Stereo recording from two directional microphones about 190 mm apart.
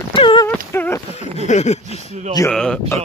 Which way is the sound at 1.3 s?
35° left (ahead or behind).